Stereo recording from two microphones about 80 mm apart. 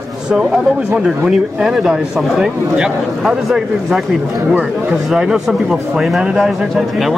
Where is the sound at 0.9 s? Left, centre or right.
Centre.